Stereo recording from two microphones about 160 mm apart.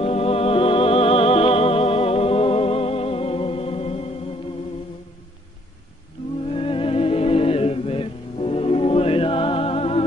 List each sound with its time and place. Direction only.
0.0 s music: 40° left (ahead or behind)
6.5 s music: 35° left (ahead or behind)